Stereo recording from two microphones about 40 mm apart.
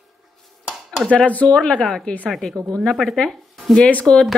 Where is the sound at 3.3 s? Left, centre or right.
Centre.